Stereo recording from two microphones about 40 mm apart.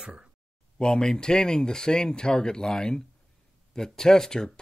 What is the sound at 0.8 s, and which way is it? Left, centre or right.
Speech, centre.